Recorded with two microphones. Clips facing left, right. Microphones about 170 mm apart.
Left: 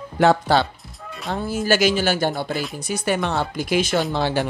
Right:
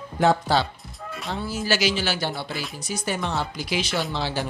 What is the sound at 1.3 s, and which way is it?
Speech, 50° left (ahead or behind).